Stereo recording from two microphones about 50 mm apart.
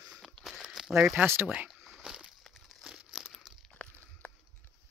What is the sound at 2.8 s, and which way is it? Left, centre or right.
Crumpling, centre.